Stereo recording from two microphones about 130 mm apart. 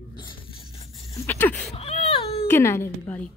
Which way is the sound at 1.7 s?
55° left (ahead or behind).